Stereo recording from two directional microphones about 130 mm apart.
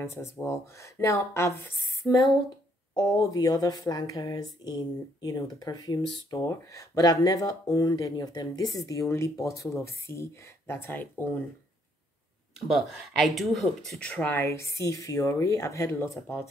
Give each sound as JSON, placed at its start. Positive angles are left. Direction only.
{"t": 0.0, "sound": "speech", "side_deg": 20}
{"t": 12.5, "sound": "speech", "side_deg": 0}